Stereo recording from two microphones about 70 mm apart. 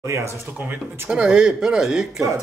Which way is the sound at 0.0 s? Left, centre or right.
Right.